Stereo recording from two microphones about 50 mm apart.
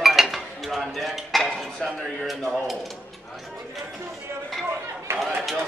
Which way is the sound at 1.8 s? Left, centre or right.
Centre.